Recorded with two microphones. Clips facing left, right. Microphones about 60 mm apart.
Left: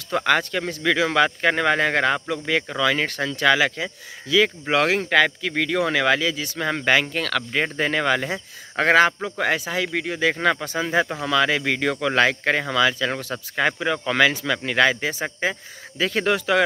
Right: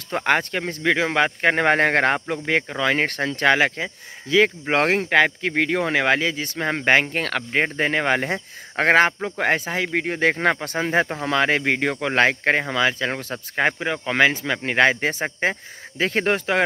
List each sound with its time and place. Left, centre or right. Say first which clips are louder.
0.1 s a man's voice: even; right
10.6 s a man's voice: right 1 dB; right